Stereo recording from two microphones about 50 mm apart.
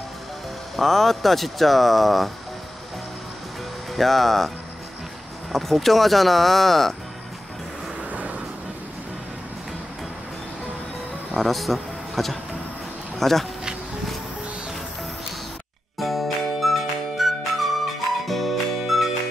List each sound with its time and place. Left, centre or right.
0.7 s speech: centre
3.9 s speech: centre
5.5 s speech: centre
8.1 s vehicle: right
11.3 s speech: centre
16.0 s music: centre